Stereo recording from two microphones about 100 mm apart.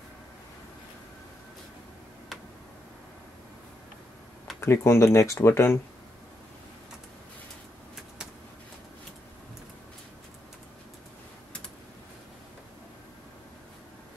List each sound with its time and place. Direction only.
4.6 s speech: 25° left (ahead or behind)